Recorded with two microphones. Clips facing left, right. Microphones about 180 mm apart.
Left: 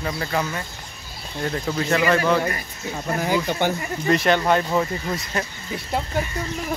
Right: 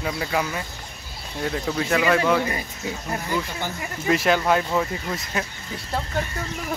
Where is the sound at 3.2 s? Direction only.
80° left.